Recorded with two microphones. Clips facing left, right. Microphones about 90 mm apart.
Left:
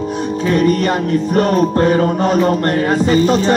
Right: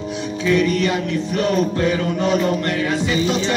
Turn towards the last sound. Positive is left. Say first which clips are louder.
# left 7 dB
turn(degrees=45)  # may be behind; listen again after turning